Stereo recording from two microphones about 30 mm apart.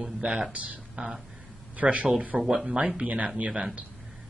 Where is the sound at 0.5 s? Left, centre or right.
Right.